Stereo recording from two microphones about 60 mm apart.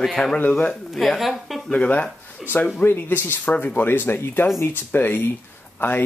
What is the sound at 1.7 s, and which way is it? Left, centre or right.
Speech, left.